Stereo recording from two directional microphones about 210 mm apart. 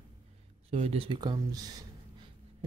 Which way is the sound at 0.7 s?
30° right (ahead or behind).